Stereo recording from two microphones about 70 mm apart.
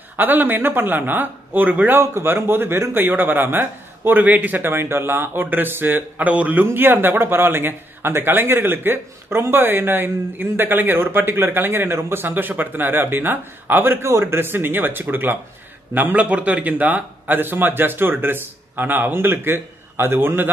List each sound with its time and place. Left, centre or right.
0.1 s a man's voice: right
6.6 s speech: right
14.0 s a man's voice: right